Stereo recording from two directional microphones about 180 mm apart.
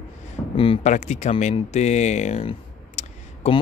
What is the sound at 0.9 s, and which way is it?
Speech, 40° left (ahead or behind).